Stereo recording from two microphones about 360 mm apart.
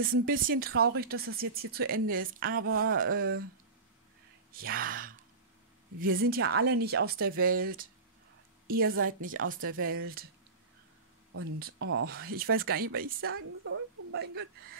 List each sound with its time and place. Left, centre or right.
0.0 s speech: right
4.5 s speech: right
11.3 s speech: right
13.7 s a sound: right